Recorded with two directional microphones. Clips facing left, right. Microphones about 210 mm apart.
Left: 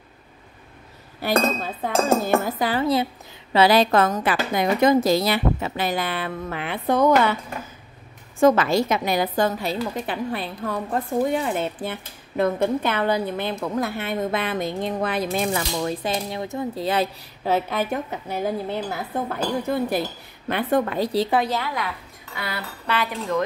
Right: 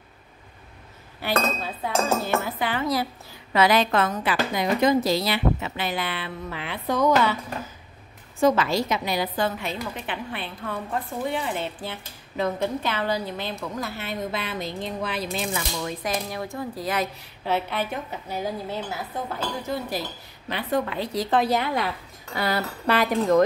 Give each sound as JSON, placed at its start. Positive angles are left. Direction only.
{"t": 1.2, "sound": "dishes", "side_deg": 40}
{"t": 3.5, "sound": "a woman's voice", "side_deg": 35}
{"t": 8.4, "sound": "a woman's voice", "side_deg": 50}
{"t": 16.0, "sound": "speech", "side_deg": 25}
{"t": 17.5, "sound": "a woman's voice", "side_deg": 45}
{"t": 18.7, "sound": "speech", "side_deg": 60}
{"t": 21.5, "sound": "speech", "side_deg": -20}